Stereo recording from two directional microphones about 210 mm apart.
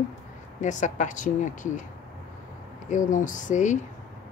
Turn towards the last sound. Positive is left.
turn(degrees=35)  # may be behind; listen again after turning